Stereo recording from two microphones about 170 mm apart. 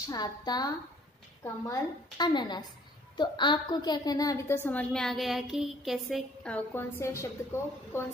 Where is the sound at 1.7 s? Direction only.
25° left (ahead or behind).